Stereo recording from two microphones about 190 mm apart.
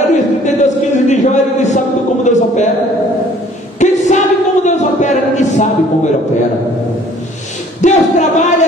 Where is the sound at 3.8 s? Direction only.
40° left (ahead or behind).